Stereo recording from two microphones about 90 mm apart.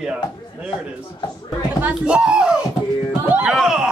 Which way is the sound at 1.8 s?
15° right (ahead or behind).